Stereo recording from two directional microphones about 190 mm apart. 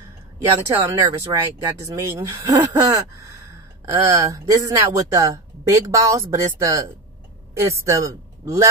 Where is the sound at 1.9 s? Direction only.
15° right (ahead or behind).